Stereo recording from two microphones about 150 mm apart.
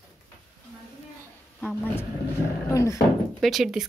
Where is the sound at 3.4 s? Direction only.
Centre (ahead or behind).